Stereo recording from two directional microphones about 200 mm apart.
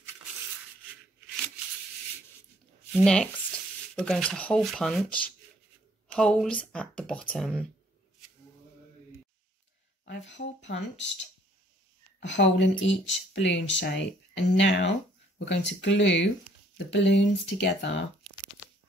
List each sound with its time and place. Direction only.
2.9 s speech: 5° left (ahead or behind)
10.0 s speech: 65° left (ahead or behind)
12.2 s speech: 65° left (ahead or behind)